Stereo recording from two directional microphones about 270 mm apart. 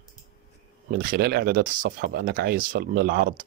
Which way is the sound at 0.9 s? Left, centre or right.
Right.